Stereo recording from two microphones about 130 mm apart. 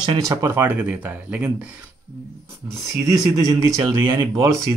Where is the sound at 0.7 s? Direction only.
15° right (ahead or behind).